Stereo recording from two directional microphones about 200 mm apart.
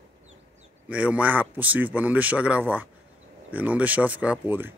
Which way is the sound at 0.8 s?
5° right (ahead or behind).